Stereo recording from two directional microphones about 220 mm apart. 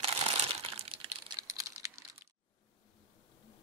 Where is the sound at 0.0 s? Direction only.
25° right (ahead or behind).